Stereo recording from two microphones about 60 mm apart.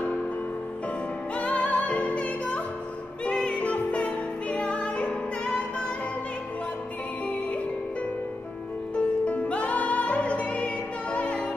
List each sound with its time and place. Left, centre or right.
1.3 s music: left
8.9 s music: left